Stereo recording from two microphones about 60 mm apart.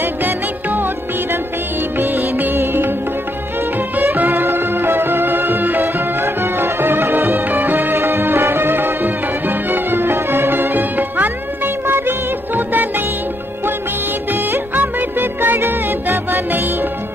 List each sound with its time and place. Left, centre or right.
0.0 s music: right
2.0 s music: right
3.9 s music: right
14.3 s music: right